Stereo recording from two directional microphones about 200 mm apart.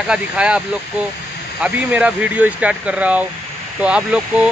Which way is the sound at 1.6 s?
5° right (ahead or behind).